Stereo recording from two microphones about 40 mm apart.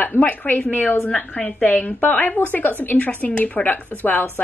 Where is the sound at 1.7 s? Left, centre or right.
Left.